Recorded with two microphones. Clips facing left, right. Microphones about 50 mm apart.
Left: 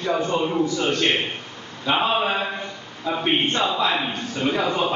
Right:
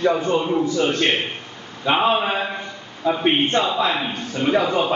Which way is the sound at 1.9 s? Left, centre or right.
Centre.